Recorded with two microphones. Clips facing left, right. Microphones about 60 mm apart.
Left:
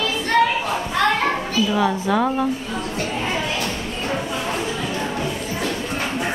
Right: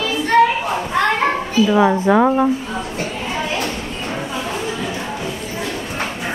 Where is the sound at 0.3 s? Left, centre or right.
Centre.